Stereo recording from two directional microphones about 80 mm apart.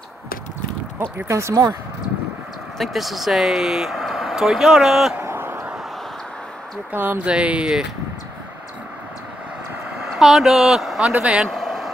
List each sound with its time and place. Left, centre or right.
0.9 s speech: right
1.5 s speech: right
2.8 s speech: centre
5.2 s a sound: right
6.9 s speech: right
7.2 s speech: centre
10.1 s speech: centre
11.5 s a sound: centre